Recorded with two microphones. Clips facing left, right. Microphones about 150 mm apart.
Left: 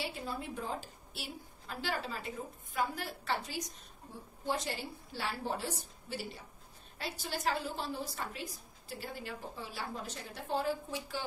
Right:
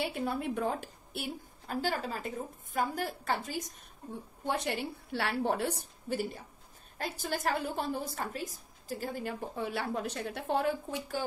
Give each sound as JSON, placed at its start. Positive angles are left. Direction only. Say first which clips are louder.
{"t": 0.0, "sound": "a woman's voice", "louder": "right 6 dB", "side_deg": -55}
{"t": 4.5, "sound": "a woman's voice", "louder": "right 3 dB", "side_deg": -60}